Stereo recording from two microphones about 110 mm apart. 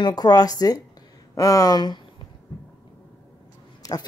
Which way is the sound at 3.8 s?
35° left (ahead or behind).